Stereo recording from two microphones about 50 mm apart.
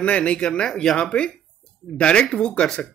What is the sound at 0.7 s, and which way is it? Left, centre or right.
Speech, centre.